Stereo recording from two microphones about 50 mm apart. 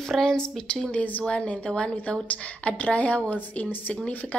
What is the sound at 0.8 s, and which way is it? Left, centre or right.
A woman's voice, left.